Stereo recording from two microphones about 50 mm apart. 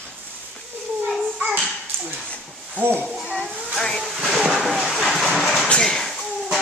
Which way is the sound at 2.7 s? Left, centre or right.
Right.